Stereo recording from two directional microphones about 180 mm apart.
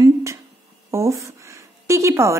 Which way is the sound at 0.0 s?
15° right (ahead or behind).